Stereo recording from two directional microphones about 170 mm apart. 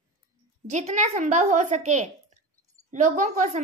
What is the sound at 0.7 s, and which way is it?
A woman's voice, 40° right (ahead or behind).